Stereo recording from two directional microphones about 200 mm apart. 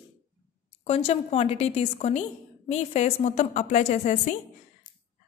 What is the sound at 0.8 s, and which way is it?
A woman's voice, 30° left (ahead or behind).